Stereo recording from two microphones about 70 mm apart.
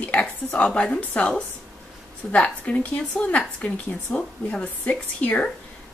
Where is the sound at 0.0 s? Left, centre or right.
Centre.